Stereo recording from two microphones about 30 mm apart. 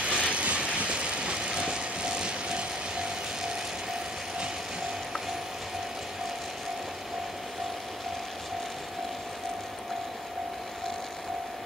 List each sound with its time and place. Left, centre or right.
0.0 s vehicle: right